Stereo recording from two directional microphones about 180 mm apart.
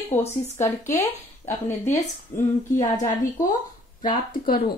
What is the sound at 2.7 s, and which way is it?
A woman's voice, 45° left (ahead or behind).